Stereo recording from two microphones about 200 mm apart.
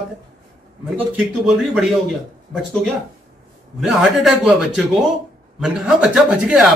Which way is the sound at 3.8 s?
Centre (ahead or behind).